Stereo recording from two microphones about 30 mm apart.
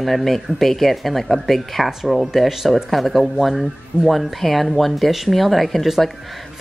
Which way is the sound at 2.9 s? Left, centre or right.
Centre.